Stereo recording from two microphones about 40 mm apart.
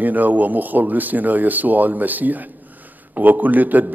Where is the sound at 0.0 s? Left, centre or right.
Right.